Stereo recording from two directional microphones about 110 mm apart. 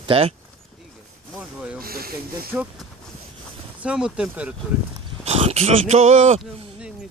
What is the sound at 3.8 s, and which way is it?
Speech, 10° right (ahead or behind).